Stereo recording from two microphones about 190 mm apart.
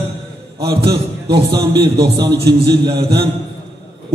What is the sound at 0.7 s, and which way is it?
A man's voice, 60° right (ahead or behind).